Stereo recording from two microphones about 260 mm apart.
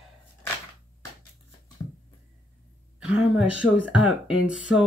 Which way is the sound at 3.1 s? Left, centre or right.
Centre.